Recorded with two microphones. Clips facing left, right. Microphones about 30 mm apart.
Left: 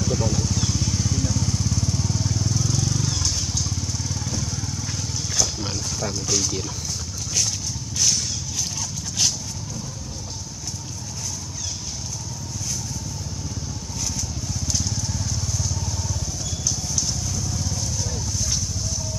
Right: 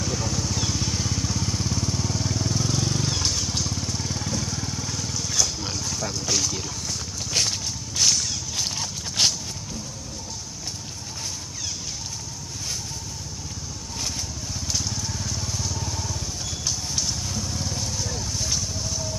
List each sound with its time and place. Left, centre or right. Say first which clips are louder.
0.0 s vehicle: left 3 dB; centre
4.8 s wild animals: even; centre
6.3 s speech: left 1 dB; centre
7.3 s a sound: right 1 dB; right
9.2 s a sound: right 2 dB; right
14.7 s vehicle: left 1 dB; centre
17.3 s vehicle: left 1 dB; right